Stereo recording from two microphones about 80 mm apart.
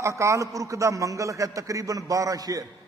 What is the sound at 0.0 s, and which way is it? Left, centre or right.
A man's voice, right.